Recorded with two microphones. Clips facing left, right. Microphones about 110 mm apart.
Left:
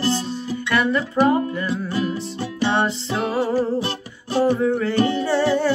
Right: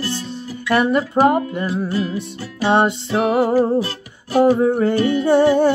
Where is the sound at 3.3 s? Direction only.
50° right (ahead or behind).